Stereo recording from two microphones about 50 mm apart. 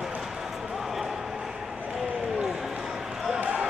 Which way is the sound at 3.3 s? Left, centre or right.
Centre.